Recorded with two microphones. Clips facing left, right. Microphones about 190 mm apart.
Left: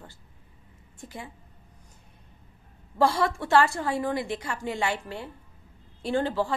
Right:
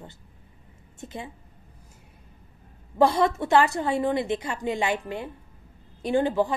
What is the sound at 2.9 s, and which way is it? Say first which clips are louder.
A woman's voice: right 3 dB; 20° right (ahead or behind).